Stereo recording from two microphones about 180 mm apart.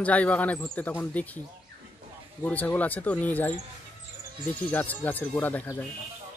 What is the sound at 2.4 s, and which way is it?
Speech, 10° left (ahead or behind).